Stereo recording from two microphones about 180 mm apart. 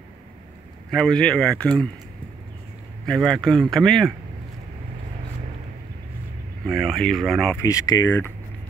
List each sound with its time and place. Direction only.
0.9 s speech: 5° left (ahead or behind)
3.1 s speech: centre (ahead or behind)
6.6 s speech: centre (ahead or behind)
7.6 s speech: 20° left (ahead or behind)